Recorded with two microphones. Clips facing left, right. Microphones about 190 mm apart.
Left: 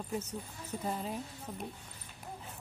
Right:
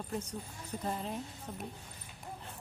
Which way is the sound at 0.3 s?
5° left (ahead or behind).